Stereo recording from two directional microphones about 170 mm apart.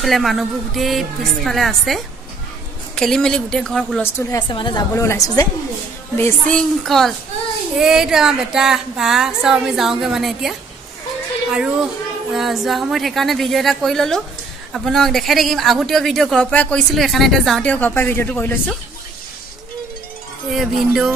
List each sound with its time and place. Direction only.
0.0 s speech: centre (ahead or behind)
3.0 s speech: 5° left (ahead or behind)
4.3 s a woman's voice: 25° left (ahead or behind)
6.1 s speech: 10° left (ahead or behind)
11.5 s speech: 5° right (ahead or behind)
20.5 s speech: centre (ahead or behind)